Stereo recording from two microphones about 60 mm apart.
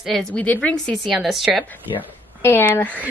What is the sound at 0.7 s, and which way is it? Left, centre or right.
Speech, centre.